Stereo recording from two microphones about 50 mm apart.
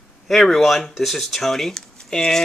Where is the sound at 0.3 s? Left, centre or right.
Centre.